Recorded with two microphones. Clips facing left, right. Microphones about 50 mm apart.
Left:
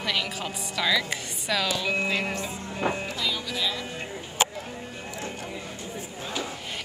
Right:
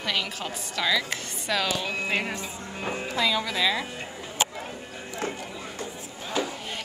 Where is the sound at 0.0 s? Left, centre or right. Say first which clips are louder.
Even; centre.